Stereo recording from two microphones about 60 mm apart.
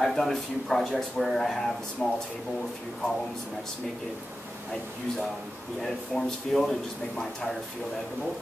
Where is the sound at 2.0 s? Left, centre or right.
Left.